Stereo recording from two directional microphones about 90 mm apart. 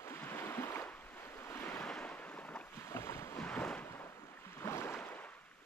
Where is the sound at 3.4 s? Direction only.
10° left (ahead or behind).